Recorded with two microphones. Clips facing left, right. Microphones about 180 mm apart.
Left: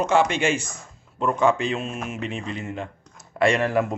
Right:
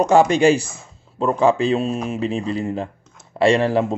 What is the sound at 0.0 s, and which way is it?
A man's voice, 40° right (ahead or behind).